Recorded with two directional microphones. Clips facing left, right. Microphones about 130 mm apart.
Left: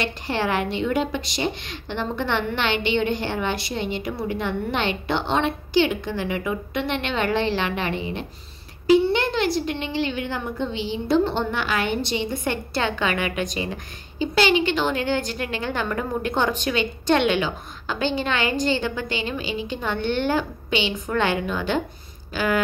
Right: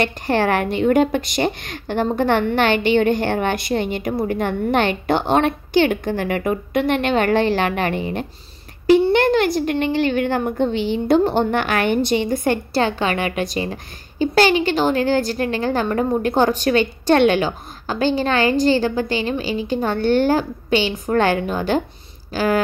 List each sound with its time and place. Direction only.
0.0 s a woman's voice: 50° right (ahead or behind); by 22.6 s 35° right (ahead or behind)